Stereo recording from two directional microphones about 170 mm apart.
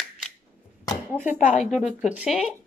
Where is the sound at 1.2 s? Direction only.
45° left (ahead or behind).